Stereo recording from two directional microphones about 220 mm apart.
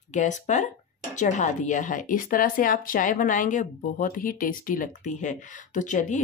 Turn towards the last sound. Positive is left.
turn(degrees=35)  # may be behind; listen again after turning